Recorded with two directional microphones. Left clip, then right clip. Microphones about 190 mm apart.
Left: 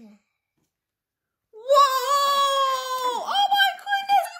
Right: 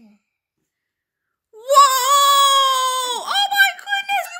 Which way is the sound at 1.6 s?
20° right (ahead or behind).